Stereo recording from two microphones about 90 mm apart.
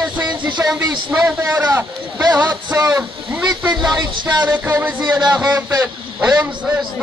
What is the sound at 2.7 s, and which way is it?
Speech, 35° right (ahead or behind).